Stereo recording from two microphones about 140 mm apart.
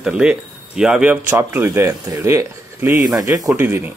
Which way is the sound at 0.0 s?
5° right (ahead or behind).